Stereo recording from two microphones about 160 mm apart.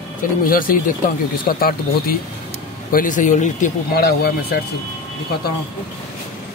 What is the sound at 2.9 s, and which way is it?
Speech, 60° left (ahead or behind).